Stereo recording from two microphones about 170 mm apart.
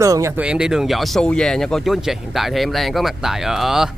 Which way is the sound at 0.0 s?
20° right (ahead or behind).